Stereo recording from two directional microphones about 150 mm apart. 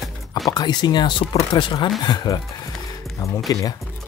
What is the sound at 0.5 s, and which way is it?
Speech, 25° left (ahead or behind).